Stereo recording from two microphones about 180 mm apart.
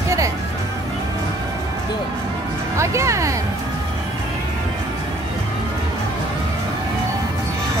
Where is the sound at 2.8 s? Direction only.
15° right (ahead or behind).